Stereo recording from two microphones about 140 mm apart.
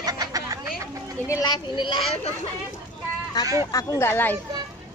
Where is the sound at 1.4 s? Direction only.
30° left (ahead or behind).